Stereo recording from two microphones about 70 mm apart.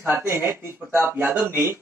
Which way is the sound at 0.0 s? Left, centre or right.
Right.